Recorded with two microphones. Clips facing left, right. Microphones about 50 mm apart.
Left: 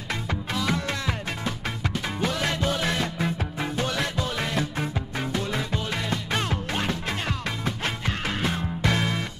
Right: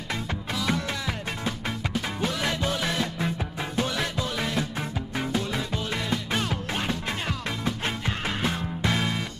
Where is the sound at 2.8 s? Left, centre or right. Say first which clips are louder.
Left 1 dB; centre.